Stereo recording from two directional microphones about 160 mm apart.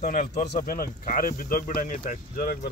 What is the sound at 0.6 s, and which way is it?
Speech, 60° left (ahead or behind).